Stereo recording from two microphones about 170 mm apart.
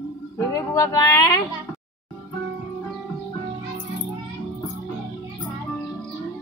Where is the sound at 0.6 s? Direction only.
20° left (ahead or behind).